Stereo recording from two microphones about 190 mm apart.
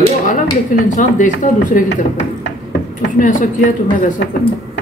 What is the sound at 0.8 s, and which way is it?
Speech, 40° left (ahead or behind).